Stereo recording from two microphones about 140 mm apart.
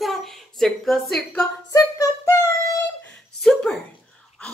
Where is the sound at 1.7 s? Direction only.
25° left (ahead or behind).